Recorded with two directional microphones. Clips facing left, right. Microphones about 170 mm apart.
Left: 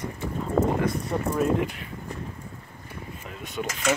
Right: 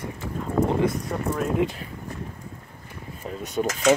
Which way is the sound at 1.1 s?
10° left (ahead or behind).